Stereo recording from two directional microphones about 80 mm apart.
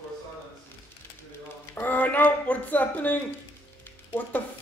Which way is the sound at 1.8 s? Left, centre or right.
Left.